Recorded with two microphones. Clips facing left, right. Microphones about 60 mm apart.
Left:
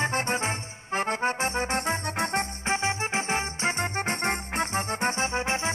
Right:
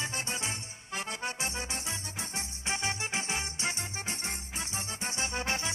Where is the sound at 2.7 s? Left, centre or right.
Left.